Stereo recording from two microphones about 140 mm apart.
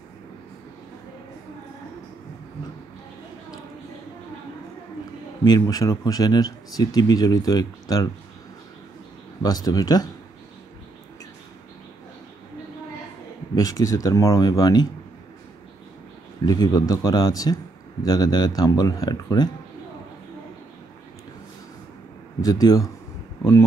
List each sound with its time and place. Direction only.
5.4 s speech: 25° left (ahead or behind)
9.4 s speech: 25° left (ahead or behind)
13.6 s speech: 25° left (ahead or behind)
16.4 s speech: 30° left (ahead or behind)
22.4 s speech: 25° left (ahead or behind)